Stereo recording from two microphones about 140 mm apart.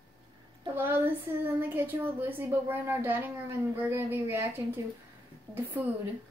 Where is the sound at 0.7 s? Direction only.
15° right (ahead or behind).